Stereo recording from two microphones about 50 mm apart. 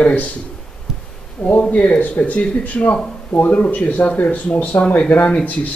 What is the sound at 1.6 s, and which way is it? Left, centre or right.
Speech, left.